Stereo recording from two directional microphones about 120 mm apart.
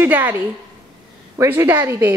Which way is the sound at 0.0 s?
15° right (ahead or behind).